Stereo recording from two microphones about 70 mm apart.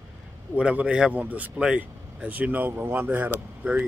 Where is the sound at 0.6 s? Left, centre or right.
Centre.